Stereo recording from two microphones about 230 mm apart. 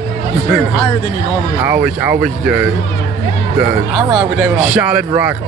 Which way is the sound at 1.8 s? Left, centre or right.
Centre.